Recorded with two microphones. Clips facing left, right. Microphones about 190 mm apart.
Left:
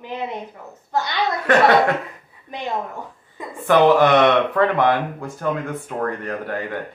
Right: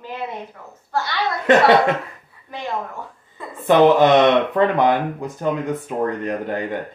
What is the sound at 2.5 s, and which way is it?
Speech, 20° left (ahead or behind).